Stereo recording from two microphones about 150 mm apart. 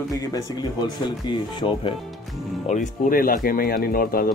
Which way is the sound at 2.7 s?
60° left (ahead or behind).